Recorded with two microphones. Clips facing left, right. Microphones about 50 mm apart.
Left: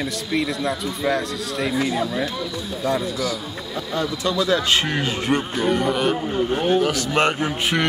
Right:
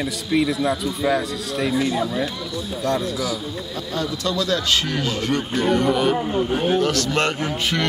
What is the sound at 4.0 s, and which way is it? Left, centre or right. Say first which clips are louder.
Speech: left 1 dB; left.